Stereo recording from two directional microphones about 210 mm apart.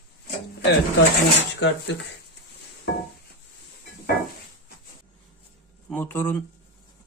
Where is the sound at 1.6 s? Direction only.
60° left (ahead or behind).